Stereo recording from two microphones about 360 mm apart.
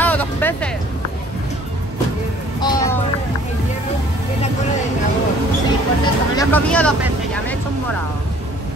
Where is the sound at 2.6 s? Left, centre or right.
Centre.